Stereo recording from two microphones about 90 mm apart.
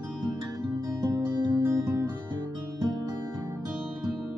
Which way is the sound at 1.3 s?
50° right (ahead or behind).